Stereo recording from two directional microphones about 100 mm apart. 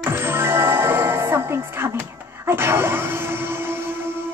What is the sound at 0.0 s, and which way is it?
Music, 25° right (ahead or behind).